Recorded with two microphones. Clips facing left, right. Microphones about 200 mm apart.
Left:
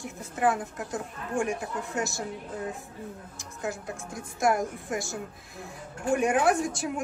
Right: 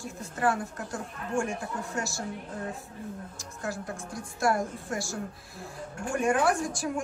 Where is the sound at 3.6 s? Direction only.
20° left (ahead or behind).